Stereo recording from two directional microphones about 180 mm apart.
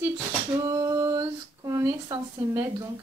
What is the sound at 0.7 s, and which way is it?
Female singing, 20° right (ahead or behind).